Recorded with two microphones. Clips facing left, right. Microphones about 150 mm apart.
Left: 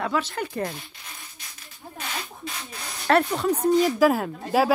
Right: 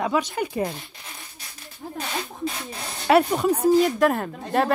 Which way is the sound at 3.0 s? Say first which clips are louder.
Right 3 dB; 15° right (ahead or behind).